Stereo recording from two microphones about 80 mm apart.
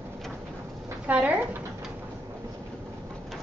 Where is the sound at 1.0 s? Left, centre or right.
Centre.